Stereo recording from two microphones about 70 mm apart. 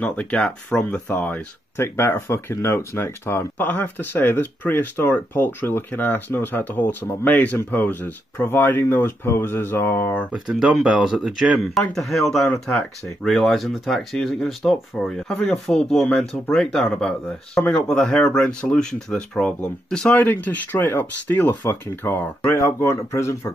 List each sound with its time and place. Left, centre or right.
0.0 s speech: centre
1.8 s speech: left
10.4 s speech: centre; by 23.5 s left